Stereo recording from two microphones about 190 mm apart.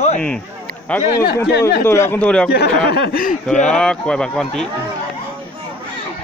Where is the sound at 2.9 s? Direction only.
50° left (ahead or behind).